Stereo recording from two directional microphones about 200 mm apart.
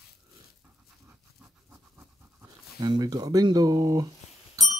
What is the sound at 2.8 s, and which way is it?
Speech, 20° right (ahead or behind).